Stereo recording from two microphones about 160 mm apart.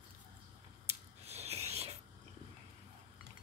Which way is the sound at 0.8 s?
40° right (ahead or behind).